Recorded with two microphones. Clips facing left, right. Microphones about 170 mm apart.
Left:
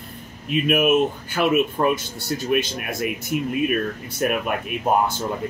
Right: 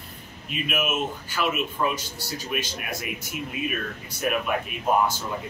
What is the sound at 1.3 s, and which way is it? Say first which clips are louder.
Speech: left 7 dB; 55° left (ahead or behind).